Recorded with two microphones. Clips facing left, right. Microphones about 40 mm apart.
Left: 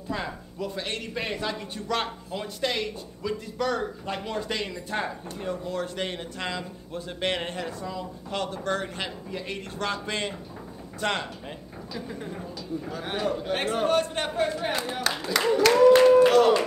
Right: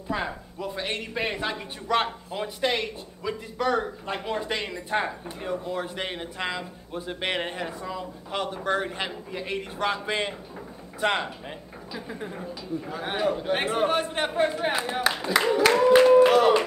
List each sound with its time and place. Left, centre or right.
0.1 s a man's voice: centre